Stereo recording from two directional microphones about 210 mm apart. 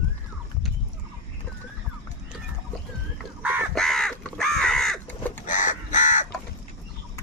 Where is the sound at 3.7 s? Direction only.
Centre (ahead or behind).